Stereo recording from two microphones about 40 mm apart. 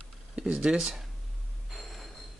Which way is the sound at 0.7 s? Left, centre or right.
Centre.